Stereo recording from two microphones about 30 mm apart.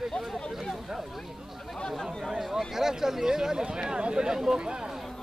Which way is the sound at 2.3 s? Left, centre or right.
Centre.